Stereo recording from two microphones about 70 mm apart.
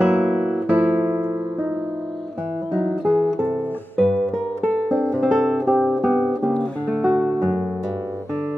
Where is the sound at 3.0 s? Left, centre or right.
Centre.